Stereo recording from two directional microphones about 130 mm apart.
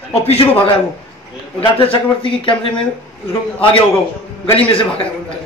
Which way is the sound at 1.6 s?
40° left (ahead or behind).